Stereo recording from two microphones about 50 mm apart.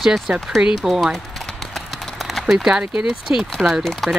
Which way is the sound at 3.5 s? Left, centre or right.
Centre.